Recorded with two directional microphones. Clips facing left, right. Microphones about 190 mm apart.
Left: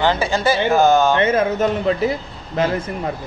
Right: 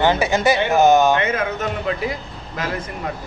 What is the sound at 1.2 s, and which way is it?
A man's voice, 30° left (ahead or behind).